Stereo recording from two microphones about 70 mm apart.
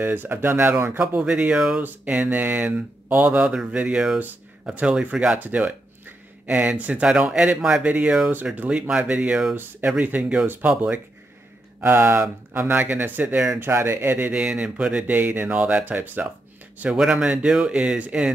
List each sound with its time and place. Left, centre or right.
0.0 s speech: right
1.2 s speech: centre
1.8 s speech: right
3.3 s speech: centre
6.0 s a sound: right
6.8 s speech: right
11.8 s speech: right; by 13.6 s centre
13.6 s speech: right
14.3 s speech: centre
15.1 s speech: right
16.9 s speech: centre